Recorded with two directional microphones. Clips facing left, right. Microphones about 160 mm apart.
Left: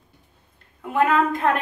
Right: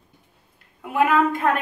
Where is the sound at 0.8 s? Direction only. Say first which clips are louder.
Right 1 dB; 10° right (ahead or behind).